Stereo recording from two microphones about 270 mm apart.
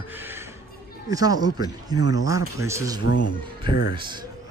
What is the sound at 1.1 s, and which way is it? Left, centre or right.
A man's voice, centre.